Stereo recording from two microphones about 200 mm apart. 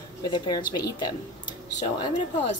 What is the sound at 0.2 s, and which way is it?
Speech, 20° left (ahead or behind).